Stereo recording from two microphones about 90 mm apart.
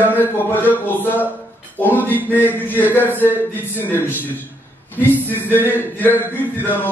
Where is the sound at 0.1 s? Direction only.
20° left (ahead or behind).